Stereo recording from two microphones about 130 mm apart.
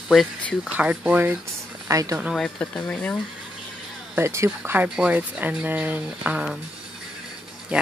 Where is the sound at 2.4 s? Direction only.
10° left (ahead or behind).